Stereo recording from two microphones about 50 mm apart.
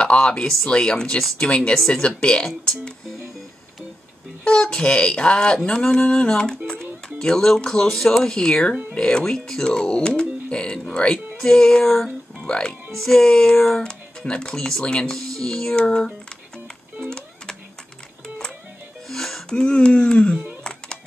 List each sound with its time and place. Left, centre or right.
0.0 s speech: left
4.5 s a sound: centre
6.2 s speech: centre
6.7 s music: centre
7.6 s speech: centre
10.9 s a sound: centre
11.3 s speech: centre
12.4 s speech: centre
12.9 s speech: centre
15.8 s a sound: centre
19.0 s music: centre
19.5 s a sound: centre